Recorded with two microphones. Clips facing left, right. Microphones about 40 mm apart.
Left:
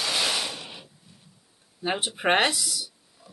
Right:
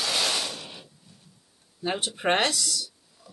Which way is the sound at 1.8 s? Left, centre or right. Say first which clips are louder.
Left 1 dB; centre.